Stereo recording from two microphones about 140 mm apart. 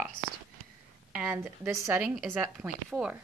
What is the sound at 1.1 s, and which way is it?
Speech, 10° right (ahead or behind).